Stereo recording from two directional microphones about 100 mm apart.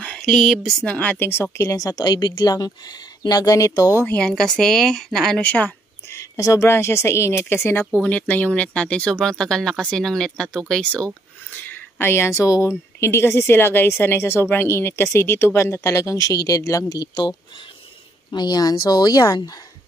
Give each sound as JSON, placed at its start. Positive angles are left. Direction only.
{"t": 0.0, "sound": "speech", "side_deg": 10}
{"t": 0.9, "sound": "speech", "side_deg": 20}
{"t": 4.1, "sound": "speech", "side_deg": 10}
{"t": 6.0, "sound": "speech", "side_deg": 30}